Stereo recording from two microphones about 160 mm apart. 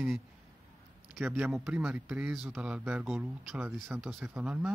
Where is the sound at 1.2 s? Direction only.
10° right (ahead or behind).